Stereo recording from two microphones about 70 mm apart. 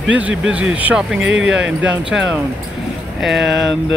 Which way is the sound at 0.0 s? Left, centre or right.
Centre.